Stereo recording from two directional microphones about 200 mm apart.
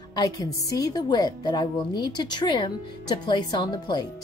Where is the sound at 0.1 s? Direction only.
15° left (ahead or behind).